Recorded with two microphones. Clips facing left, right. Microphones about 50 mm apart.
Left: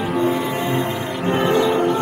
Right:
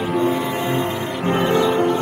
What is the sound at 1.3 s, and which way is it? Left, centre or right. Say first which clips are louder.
Music: even; left.